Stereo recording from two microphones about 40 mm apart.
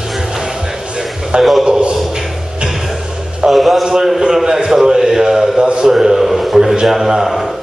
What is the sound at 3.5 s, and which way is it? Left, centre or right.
A man's voice, centre.